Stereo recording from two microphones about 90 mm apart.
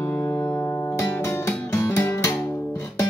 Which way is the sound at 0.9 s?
30° left (ahead or behind).